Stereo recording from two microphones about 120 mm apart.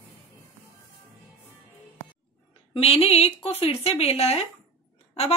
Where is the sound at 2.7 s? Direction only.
55° left (ahead or behind).